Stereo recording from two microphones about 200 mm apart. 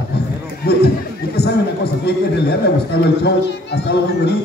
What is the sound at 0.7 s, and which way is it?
Chatter, 55° left (ahead or behind).